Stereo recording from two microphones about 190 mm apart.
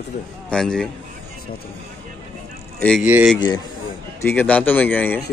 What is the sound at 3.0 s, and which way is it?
Speech, 10° right (ahead or behind).